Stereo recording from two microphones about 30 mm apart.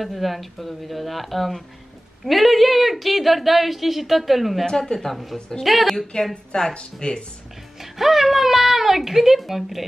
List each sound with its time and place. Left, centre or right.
0.0 s a woman's voice: centre
4.6 s speech: centre
5.1 s a woman's voice: centre
6.7 s speech: left
7.8 s a sound: centre